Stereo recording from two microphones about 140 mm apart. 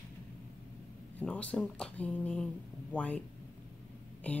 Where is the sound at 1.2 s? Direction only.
10° left (ahead or behind).